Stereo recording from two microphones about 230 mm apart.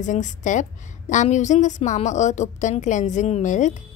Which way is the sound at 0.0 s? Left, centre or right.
Left.